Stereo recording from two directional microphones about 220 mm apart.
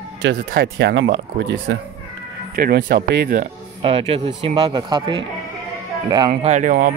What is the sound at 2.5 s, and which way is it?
Speech, 40° right (ahead or behind).